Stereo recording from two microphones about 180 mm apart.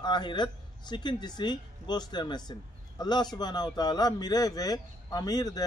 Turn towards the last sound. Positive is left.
turn(degrees=20)  # may be behind; listen again after turning